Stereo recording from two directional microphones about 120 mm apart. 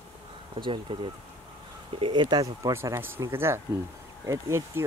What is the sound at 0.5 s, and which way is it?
Speech, 45° right (ahead or behind).